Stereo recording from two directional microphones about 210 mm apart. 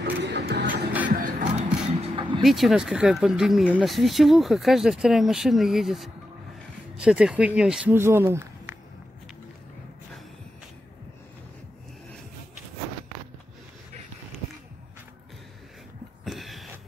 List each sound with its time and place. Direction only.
0.0 s music: 55° right (ahead or behind)
1.2 s vehicle: 35° right (ahead or behind)
2.4 s speech: centre (ahead or behind)
16.3 s a sound: centre (ahead or behind)